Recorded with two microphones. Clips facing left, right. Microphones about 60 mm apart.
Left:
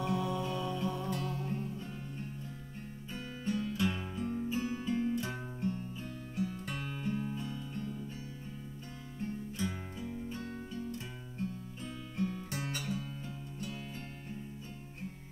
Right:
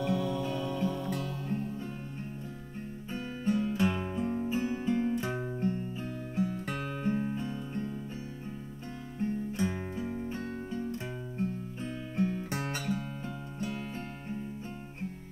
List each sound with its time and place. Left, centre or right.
0.1 s music: left
0.4 s music: right
3.1 s music: right
6.3 s guitar: right
9.2 s music: right